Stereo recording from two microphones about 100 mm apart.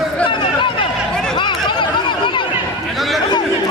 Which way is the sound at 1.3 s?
50° left (ahead or behind).